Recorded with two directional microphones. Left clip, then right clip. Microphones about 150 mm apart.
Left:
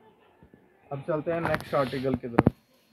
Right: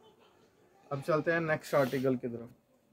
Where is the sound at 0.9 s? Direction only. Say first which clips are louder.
Left 1 dB; 25° right (ahead or behind).